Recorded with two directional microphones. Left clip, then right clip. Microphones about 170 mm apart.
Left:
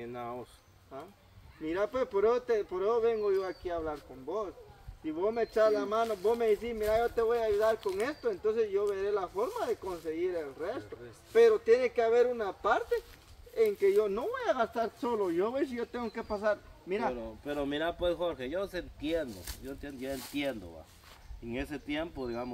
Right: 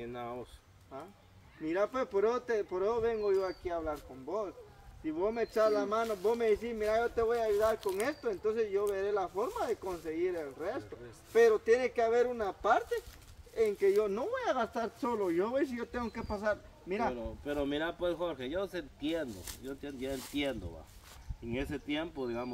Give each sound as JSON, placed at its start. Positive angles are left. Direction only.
{"t": 0.0, "sound": "speech", "side_deg": 5}
{"t": 1.6, "sound": "speech", "side_deg": -30}
{"t": 5.0, "sound": "speech", "side_deg": -30}
{"t": 17.1, "sound": "speech", "side_deg": 20}